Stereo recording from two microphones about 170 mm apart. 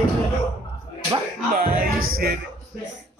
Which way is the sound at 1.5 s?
55° right (ahead or behind).